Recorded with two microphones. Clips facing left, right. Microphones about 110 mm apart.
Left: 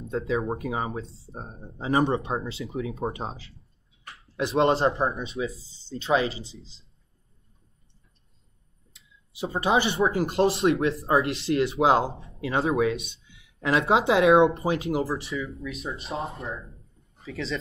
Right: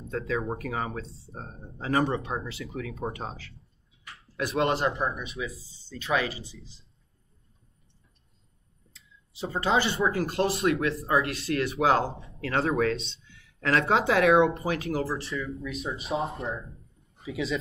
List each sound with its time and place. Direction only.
0.1 s speech: 20° left (ahead or behind)
1.0 s speech: 25° right (ahead or behind)
1.3 s speech: 20° left (ahead or behind)
8.9 s speech: 20° left (ahead or behind)
15.0 s speech: centre (ahead or behind)